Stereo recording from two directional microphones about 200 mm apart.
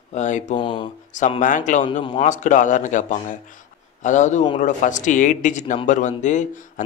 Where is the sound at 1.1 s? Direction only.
40° left (ahead or behind).